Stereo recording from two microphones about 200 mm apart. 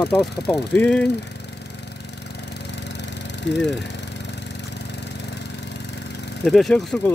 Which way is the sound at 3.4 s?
65° left (ahead or behind).